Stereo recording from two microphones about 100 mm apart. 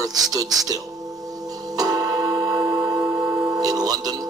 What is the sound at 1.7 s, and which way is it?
Tick-tock, 40° right (ahead or behind).